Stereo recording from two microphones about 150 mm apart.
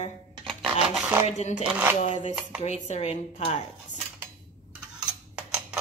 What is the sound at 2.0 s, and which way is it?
Music, 55° left (ahead or behind).